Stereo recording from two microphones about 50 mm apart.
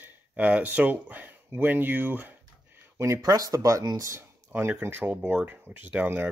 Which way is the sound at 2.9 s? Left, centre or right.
Right.